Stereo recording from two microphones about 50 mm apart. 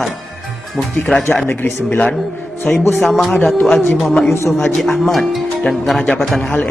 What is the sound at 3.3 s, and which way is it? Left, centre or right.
Speech, centre.